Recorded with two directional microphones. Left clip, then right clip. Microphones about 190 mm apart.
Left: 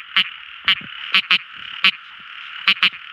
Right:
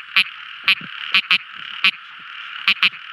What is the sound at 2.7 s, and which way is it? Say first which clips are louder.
Frog: even; 25° right (ahead or behind).